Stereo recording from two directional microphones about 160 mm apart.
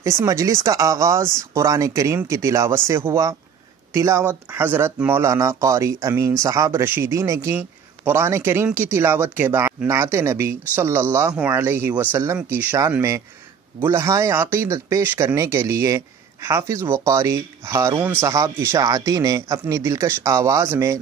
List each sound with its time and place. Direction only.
0.0 s speech: 20° right (ahead or behind)